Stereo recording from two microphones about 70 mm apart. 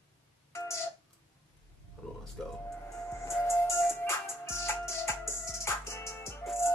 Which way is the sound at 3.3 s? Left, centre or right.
Left.